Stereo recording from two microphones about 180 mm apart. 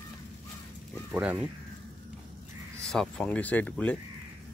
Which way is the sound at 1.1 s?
10° right (ahead or behind).